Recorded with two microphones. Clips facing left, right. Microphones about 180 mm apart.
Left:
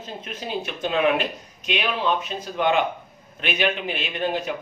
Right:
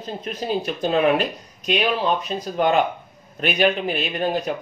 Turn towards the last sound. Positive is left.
turn(degrees=-40)  # may be behind; listen again after turning